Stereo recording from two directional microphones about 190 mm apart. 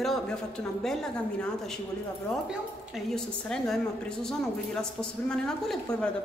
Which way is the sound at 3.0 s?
5° left (ahead or behind).